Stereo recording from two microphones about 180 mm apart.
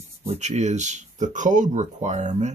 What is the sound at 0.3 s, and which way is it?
Speech, 40° right (ahead or behind).